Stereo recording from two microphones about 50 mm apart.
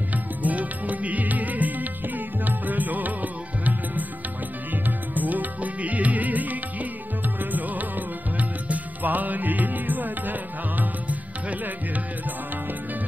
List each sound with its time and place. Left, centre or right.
0.4 s music: right
8.4 s music: right